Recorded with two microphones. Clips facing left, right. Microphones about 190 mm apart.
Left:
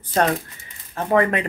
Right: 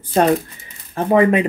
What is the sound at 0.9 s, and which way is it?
Speech, 15° right (ahead or behind).